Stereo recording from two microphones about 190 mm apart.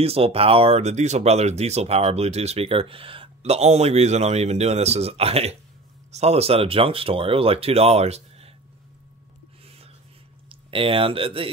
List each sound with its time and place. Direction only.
0.0 s speech: 30° right (ahead or behind)
10.5 s speech: 30° right (ahead or behind)